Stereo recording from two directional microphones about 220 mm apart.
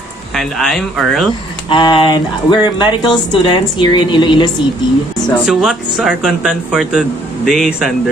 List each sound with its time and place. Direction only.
0.3 s speech: centre (ahead or behind)
1.7 s speech: 20° left (ahead or behind)
5.4 s speech: 5° right (ahead or behind)